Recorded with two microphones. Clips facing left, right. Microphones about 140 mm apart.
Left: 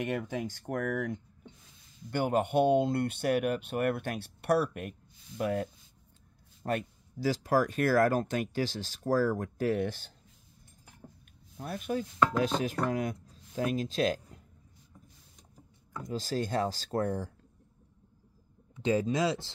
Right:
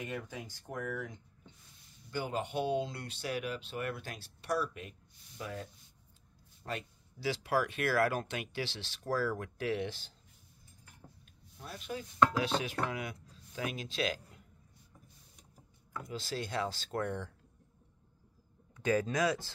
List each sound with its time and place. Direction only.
0.0 s speech: 70° left (ahead or behind)
2.0 s speech: 60° left (ahead or behind)
11.6 s speech: 50° left (ahead or behind)
16.1 s speech: 40° left (ahead or behind)
18.8 s speech: 25° left (ahead or behind)